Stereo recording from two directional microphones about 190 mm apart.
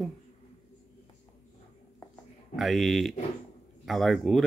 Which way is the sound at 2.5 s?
Centre (ahead or behind).